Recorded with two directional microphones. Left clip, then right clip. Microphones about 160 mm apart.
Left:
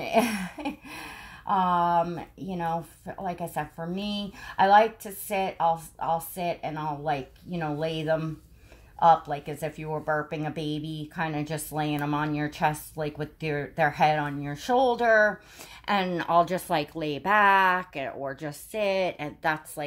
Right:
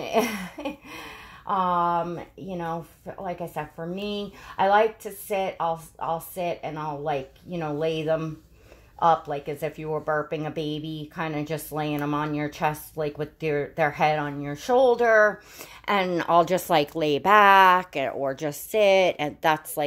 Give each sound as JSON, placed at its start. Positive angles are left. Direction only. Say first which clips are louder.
{"t": 0.0, "sound": "speech", "louder": "even", "side_deg": -30}